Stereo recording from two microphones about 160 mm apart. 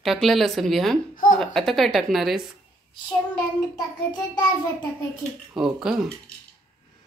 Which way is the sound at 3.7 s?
25° left (ahead or behind).